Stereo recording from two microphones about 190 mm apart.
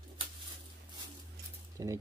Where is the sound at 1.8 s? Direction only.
20° right (ahead or behind).